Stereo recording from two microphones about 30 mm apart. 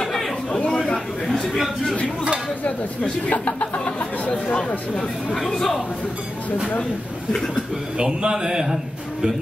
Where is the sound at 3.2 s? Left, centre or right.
Left.